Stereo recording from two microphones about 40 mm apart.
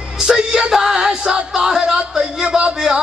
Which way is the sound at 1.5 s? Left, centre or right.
Centre.